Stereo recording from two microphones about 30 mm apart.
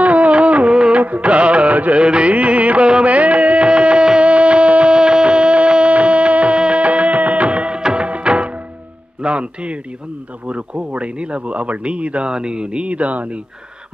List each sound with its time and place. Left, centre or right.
0.0 s music: right
3.6 s music: right
4.2 s music: right
4.9 s a sound: right
6.6 s music: right
7.9 s music of bollywood: right
9.2 s speech: right
12.3 s speech: right